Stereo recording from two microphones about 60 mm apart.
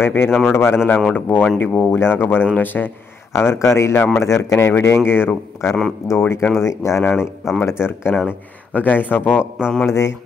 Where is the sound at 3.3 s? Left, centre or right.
Left.